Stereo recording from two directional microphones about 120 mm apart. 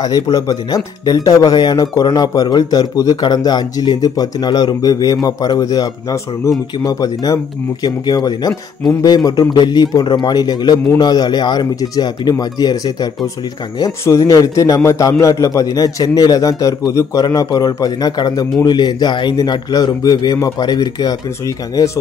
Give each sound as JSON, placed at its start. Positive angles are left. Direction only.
{"t": 0.0, "sound": "a man's voice", "side_deg": 35}